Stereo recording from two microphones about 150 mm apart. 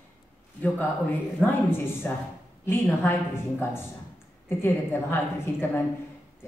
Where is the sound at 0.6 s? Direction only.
10° left (ahead or behind).